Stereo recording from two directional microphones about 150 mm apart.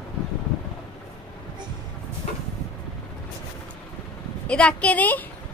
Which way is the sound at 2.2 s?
50° left (ahead or behind).